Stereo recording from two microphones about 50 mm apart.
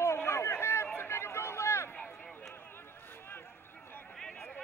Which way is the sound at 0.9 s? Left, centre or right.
Left.